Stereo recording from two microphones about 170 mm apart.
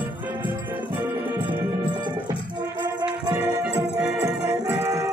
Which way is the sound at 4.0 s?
5° right (ahead or behind).